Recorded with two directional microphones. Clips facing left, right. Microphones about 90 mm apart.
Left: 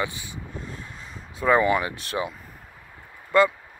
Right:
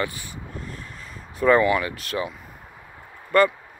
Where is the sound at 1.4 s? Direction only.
10° left (ahead or behind).